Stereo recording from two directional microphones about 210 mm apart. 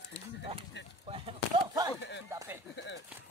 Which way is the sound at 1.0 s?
25° right (ahead or behind).